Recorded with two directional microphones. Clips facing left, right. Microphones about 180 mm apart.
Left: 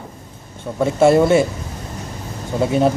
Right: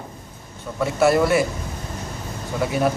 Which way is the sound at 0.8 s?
25° left (ahead or behind).